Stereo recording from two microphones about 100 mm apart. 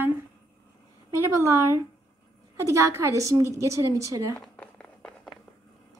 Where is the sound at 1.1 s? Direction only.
30° right (ahead or behind).